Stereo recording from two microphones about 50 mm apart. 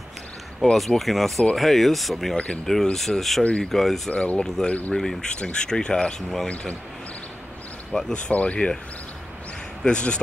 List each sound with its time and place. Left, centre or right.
0.7 s speech: centre
2.3 s speech: left
2.6 s speech: centre
4.1 s speech: left
4.4 s speech: centre
4.6 s speech: left
4.9 s speech: centre
8.1 s speech: left
9.8 s speech: centre